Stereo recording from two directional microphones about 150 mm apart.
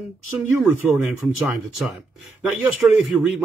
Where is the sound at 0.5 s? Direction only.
15° right (ahead or behind).